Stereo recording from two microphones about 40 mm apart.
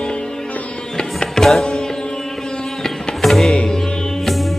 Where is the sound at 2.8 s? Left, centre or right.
Centre.